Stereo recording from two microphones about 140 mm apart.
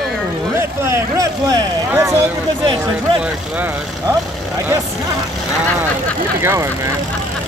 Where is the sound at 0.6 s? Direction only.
20° right (ahead or behind).